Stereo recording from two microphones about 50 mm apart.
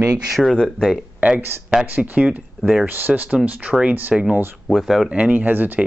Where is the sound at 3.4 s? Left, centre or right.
Right.